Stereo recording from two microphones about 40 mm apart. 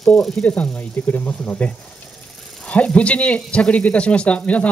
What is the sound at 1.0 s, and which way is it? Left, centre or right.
Speech, left.